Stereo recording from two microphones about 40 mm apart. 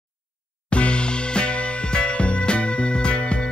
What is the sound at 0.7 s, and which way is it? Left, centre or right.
Music, left.